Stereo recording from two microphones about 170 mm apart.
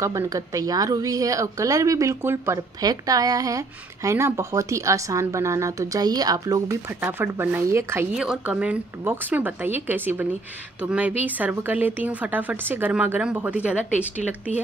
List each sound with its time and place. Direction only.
0.0 s speech: 20° right (ahead or behind)